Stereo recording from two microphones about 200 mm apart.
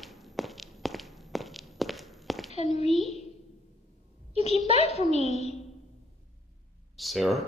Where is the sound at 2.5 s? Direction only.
30° left (ahead or behind).